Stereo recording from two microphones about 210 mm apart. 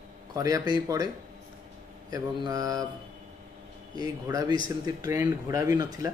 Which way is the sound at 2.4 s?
15° right (ahead or behind).